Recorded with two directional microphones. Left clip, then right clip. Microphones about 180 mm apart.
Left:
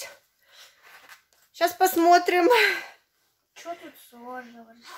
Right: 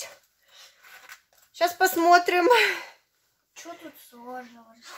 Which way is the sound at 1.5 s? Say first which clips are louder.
Left 1 dB; centre (ahead or behind).